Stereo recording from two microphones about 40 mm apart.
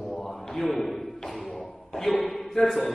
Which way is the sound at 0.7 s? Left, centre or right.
Centre.